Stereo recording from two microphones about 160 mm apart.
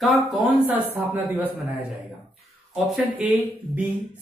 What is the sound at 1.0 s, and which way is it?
Speech, 10° right (ahead or behind).